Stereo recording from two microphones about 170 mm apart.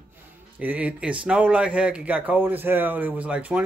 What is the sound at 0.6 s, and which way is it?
Speech, 10° right (ahead or behind).